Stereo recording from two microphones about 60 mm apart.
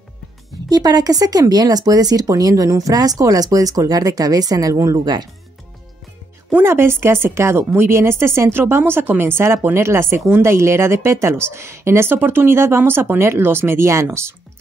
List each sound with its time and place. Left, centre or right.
0.7 s speech: right
6.6 s speech: right